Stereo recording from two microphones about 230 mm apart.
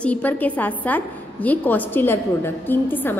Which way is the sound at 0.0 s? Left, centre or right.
Centre.